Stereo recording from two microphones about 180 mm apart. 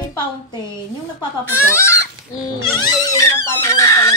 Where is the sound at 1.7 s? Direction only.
15° left (ahead or behind).